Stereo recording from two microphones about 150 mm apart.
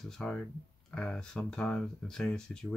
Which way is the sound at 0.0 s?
5° left (ahead or behind).